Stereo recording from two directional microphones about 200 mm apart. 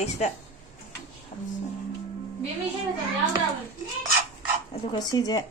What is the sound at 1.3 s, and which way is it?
Music, 40° left (ahead or behind).